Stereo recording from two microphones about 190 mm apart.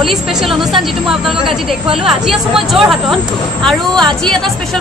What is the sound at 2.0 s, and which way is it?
Speech, centre (ahead or behind).